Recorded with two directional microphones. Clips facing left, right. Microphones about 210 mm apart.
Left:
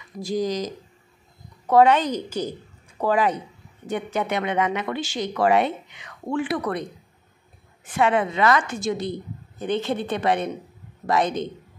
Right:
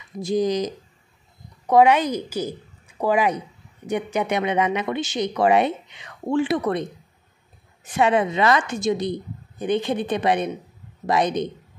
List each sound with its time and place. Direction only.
0.2 s a woman's voice: 20° right (ahead or behind)
1.7 s a woman's voice: 10° right (ahead or behind)
7.9 s a woman's voice: 20° right (ahead or behind)